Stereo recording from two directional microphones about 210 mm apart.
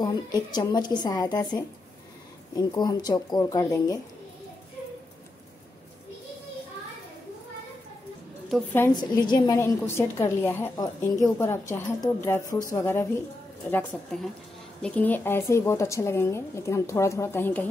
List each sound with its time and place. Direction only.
0.0 s a woman's voice: 20° left (ahead or behind)
8.7 s a woman's voice: 15° left (ahead or behind)